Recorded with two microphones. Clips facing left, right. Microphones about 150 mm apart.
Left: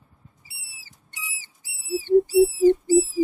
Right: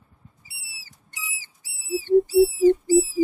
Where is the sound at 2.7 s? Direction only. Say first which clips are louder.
Even; centre (ahead or behind).